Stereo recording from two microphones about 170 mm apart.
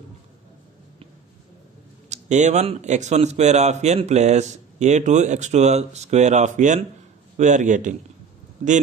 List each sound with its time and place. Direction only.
2.0 s speech: 45° right (ahead or behind)